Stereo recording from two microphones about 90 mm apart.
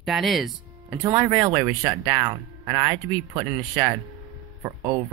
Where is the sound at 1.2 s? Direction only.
30° right (ahead or behind).